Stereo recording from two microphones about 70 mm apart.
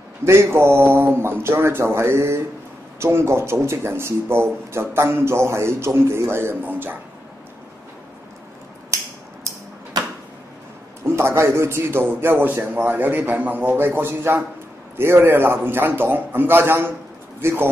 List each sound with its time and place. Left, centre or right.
0.2 s speech: right
6.6 s a man's voice: right
9.9 s a sound: right
11.1 s speech: right